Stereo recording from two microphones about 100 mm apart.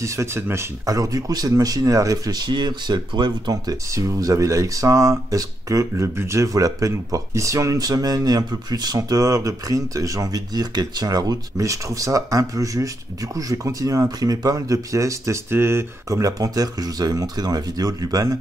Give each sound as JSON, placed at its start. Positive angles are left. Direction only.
{"t": 0.0, "sound": "speech", "side_deg": -30}
{"t": 3.9, "sound": "speech", "side_deg": -35}